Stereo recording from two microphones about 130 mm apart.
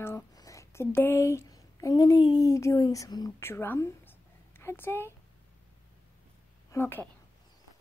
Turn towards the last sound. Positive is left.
turn(degrees=15)  # may be behind; listen again after turning